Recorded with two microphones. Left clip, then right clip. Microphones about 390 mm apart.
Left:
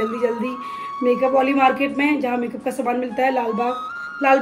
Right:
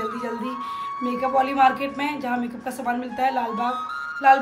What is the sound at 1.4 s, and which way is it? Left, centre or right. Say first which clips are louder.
A woman's voice: left 2 dB; centre.